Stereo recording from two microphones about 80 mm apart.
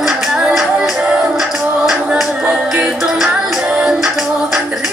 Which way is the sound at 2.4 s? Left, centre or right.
Centre.